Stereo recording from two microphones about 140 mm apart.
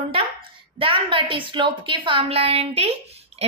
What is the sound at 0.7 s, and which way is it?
A woman's voice, 40° right (ahead or behind).